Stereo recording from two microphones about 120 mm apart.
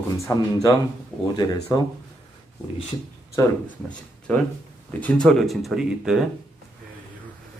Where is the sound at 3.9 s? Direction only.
10° left (ahead or behind).